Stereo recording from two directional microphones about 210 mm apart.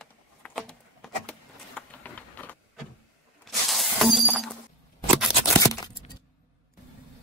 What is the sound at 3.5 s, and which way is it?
Shatter, centre (ahead or behind).